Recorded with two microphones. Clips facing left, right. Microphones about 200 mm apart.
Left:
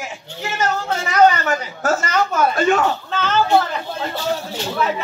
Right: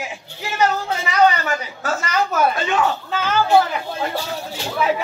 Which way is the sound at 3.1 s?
10° right (ahead or behind).